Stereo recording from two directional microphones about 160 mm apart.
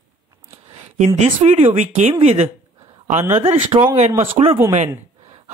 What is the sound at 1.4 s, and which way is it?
Speech, 45° right (ahead or behind).